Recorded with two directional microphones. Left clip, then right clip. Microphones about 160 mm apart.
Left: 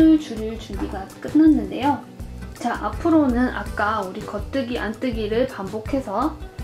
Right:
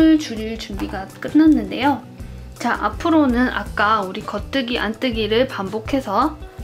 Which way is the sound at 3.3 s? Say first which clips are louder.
Right 3 dB; 35° right (ahead or behind).